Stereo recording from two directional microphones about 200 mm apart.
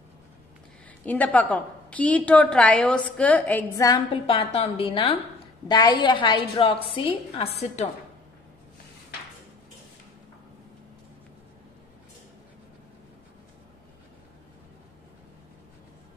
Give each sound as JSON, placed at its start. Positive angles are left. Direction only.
{"t": 1.0, "sound": "a woman's voice", "side_deg": 10}